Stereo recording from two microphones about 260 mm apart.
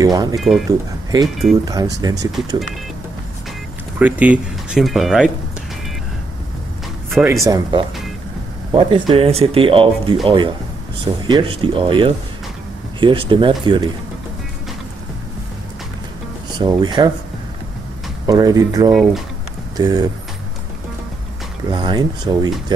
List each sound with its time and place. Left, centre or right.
0.0 s speech: centre
0.4 s speech: centre
1.6 s speech: centre
4.0 s speech: centre
7.1 s speech: centre
16.5 s speech: centre
18.2 s speech: centre
21.6 s speech: centre